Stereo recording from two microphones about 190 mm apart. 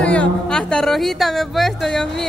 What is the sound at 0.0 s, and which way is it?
A woman's voice, 5° left (ahead or behind).